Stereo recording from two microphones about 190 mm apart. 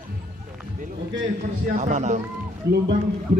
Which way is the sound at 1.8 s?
40° right (ahead or behind).